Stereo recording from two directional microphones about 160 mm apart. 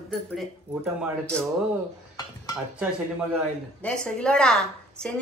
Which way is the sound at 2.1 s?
25° left (ahead or behind).